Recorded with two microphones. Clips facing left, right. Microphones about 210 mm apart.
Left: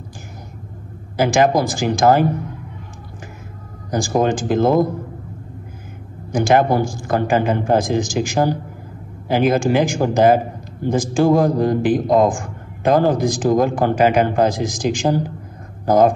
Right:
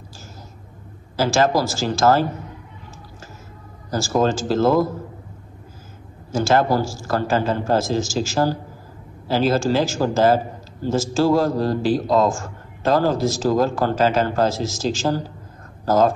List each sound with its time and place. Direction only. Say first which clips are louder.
1.1 s a man's voice: left 3 dB; 15° left (ahead or behind)
3.9 s a man's voice: left 2 dB; 15° left (ahead or behind)
6.3 s a man's voice: left 3 dB; 15° left (ahead or behind)